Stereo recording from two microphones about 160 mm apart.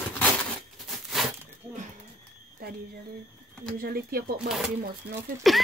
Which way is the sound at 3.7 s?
65° right (ahead or behind).